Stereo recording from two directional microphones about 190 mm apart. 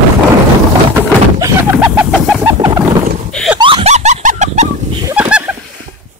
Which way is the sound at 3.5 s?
25° right (ahead or behind).